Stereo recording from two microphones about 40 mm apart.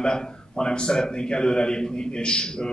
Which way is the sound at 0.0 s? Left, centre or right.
Left.